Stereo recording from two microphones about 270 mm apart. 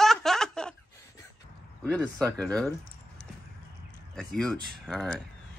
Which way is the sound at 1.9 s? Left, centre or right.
Centre.